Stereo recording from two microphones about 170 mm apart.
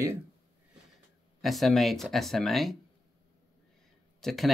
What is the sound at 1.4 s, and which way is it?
Speech, centre (ahead or behind).